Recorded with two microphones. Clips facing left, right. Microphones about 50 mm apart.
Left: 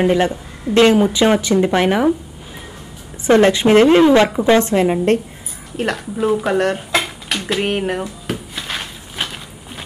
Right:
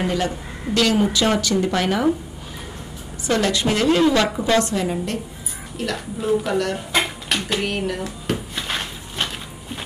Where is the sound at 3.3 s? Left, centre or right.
Left.